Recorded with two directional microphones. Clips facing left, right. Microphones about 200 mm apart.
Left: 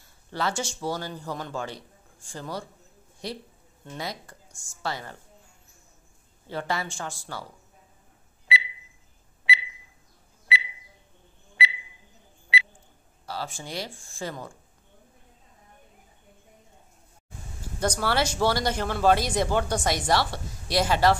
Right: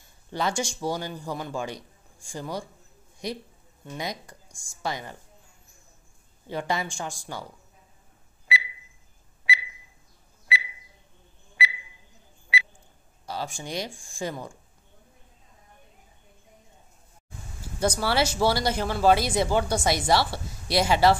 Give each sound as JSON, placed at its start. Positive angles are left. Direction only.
{"t": 0.0, "sound": "a man's voice", "side_deg": -15}
{"t": 6.5, "sound": "speech", "side_deg": -15}
{"t": 8.5, "sound": "a sound", "side_deg": 25}
{"t": 9.5, "sound": "cash register", "side_deg": 25}
{"t": 13.3, "sound": "speech", "side_deg": -15}
{"t": 17.7, "sound": "speech", "side_deg": -10}